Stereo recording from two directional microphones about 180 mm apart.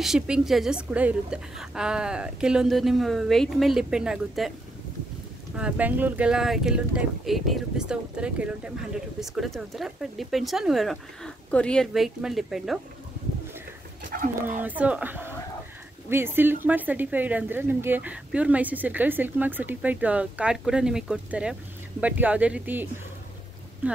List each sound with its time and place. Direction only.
0.0 s speech: centre (ahead or behind)
5.6 s speech: 10° right (ahead or behind)
14.0 s speech: 50° right (ahead or behind)
14.6 s a woman's voice: 10° right (ahead or behind)
23.8 s a sound: 10° right (ahead or behind)